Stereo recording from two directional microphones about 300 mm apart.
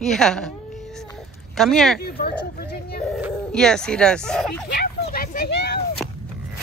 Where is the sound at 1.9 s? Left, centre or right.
Left.